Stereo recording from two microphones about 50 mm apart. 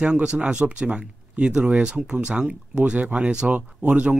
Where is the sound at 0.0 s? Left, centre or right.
Centre.